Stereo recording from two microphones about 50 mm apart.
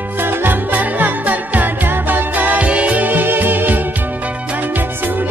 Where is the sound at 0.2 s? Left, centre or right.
Right.